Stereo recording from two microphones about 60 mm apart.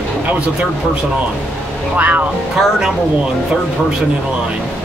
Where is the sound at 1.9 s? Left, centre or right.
Right.